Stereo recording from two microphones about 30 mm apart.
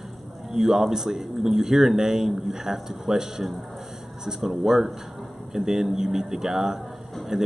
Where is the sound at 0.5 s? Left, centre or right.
Centre.